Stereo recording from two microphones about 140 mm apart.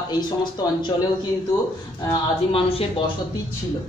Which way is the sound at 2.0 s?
40° left (ahead or behind).